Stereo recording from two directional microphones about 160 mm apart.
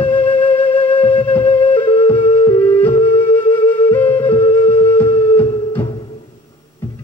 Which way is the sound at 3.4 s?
10° left (ahead or behind).